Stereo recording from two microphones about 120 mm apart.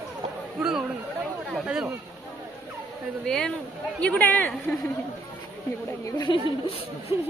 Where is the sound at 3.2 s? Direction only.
5° left (ahead or behind).